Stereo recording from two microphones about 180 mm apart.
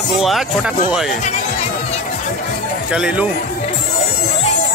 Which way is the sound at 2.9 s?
5° right (ahead or behind).